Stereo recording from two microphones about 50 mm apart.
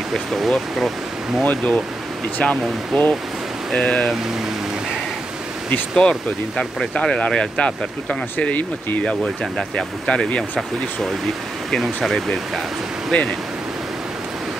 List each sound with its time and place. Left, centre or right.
0.1 s speech: centre
1.4 s speech: left
2.9 s speech: centre
5.9 s speech: centre; by 9.0 s left
9.0 s speech: centre
11.7 s speech: centre
13.1 s speech: left